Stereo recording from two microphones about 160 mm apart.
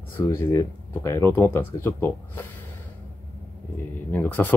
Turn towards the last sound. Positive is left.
turn(degrees=10)  # may be behind; listen again after turning